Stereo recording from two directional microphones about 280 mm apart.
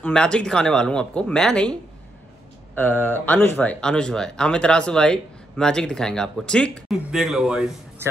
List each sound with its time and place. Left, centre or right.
0.0 s speech: centre